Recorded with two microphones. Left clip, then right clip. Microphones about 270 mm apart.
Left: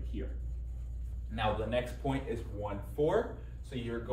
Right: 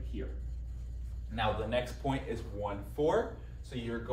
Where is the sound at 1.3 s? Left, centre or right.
Centre.